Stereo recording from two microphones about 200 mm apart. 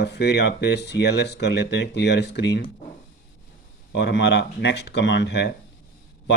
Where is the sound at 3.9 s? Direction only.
60° left (ahead or behind).